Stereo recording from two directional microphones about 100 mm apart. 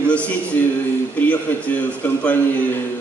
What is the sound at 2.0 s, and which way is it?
Speech, 15° left (ahead or behind).